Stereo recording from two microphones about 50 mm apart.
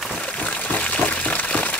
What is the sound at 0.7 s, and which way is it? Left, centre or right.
Liquid, left.